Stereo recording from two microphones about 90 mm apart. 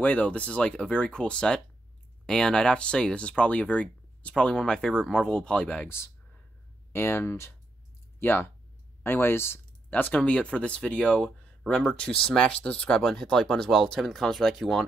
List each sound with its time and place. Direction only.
0.0 s speech: 15° left (ahead or behind)
6.9 s speech: 25° left (ahead or behind); by 14.9 s 5° left (ahead or behind)